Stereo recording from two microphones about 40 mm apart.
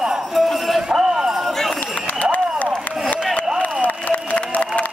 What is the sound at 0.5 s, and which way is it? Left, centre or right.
Clip-clop, centre.